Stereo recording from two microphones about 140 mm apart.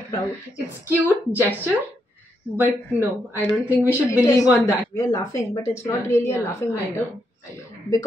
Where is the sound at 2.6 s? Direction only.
15° right (ahead or behind).